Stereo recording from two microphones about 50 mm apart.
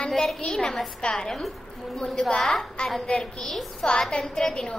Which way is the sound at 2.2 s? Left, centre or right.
Centre.